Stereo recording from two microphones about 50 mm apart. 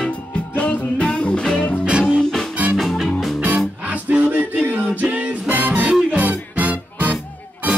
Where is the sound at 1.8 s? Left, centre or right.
Centre.